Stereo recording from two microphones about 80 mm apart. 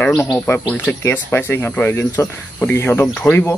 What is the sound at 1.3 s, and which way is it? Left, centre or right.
Speech, left.